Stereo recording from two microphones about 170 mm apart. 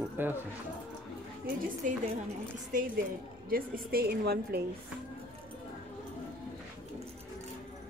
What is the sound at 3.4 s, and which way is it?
A woman's voice, 60° right (ahead or behind).